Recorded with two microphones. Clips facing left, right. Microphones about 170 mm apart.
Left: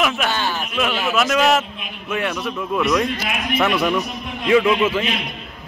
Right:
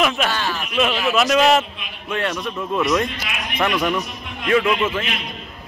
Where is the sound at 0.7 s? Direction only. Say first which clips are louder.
Right 2 dB; centre (ahead or behind).